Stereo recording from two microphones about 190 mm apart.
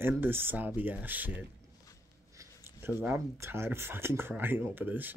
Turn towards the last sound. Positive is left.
turn(degrees=-10)  # may be behind; listen again after turning